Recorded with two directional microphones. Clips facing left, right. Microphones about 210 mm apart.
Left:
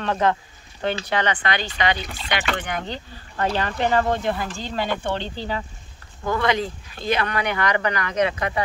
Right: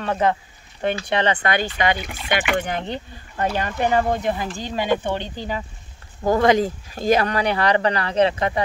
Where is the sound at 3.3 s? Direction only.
10° right (ahead or behind).